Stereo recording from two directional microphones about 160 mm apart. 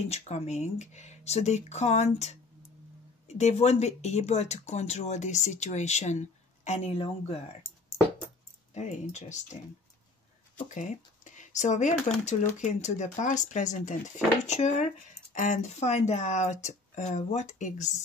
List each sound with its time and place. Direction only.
0.1 s speech: 45° left (ahead or behind)
8.7 s speech: 45° left (ahead or behind)
10.7 s speech: 50° left (ahead or behind)